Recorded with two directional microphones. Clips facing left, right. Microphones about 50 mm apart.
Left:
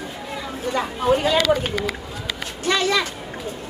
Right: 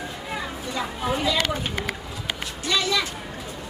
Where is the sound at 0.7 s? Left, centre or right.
Left.